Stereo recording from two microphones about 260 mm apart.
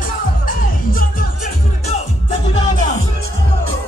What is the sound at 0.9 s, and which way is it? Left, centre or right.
Music, left.